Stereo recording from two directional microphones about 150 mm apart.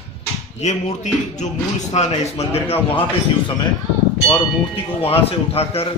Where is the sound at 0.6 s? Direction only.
50° left (ahead or behind).